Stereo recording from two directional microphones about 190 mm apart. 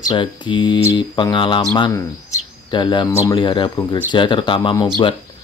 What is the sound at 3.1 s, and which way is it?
Speech, 15° left (ahead or behind).